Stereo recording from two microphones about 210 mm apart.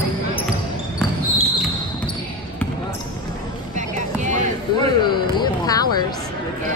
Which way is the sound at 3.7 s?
35° right (ahead or behind).